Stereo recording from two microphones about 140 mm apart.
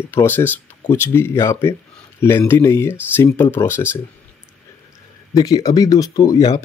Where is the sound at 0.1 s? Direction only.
15° left (ahead or behind).